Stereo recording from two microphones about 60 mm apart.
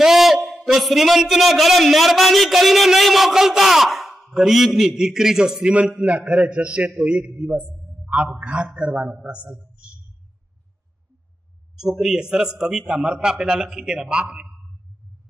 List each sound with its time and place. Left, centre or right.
0.0 s a man's voice: centre
11.8 s a man's voice: centre